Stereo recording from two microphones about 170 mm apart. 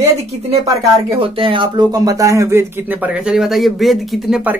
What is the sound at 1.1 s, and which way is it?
Speech, 30° right (ahead or behind).